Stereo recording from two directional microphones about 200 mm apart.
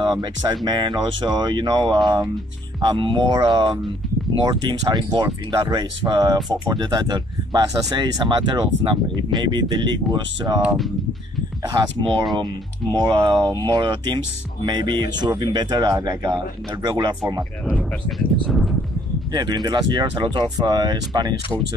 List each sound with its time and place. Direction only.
0.0 s speech: 20° right (ahead or behind)
11.6 s speech: 20° right (ahead or behind)
17.4 s speech: centre (ahead or behind)
19.3 s speech: 20° right (ahead or behind)